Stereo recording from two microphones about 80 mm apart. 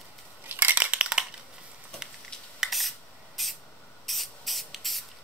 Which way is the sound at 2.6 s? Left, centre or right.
Centre.